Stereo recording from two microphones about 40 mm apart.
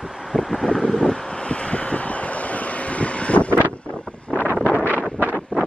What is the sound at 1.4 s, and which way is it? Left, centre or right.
Vehicle, left.